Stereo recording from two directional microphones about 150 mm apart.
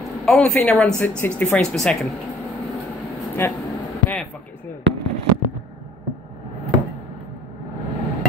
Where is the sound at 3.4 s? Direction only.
15° left (ahead or behind).